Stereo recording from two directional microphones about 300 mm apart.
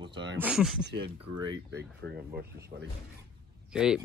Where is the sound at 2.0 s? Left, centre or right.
Right.